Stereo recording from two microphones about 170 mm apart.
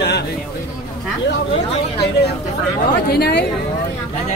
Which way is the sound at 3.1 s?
75° left (ahead or behind).